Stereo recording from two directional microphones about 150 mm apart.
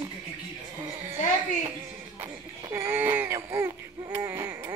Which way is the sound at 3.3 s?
20° right (ahead or behind).